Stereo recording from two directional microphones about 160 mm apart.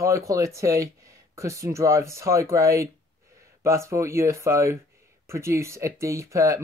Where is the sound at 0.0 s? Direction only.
20° right (ahead or behind).